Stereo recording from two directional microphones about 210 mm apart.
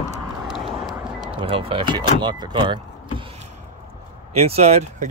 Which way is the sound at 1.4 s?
25° right (ahead or behind).